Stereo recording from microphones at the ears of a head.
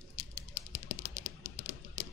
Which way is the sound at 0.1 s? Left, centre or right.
Left.